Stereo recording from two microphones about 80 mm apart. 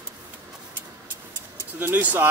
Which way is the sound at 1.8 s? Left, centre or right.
Right.